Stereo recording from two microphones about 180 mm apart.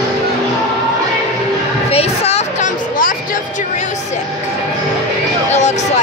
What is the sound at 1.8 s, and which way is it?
Music, 35° left (ahead or behind).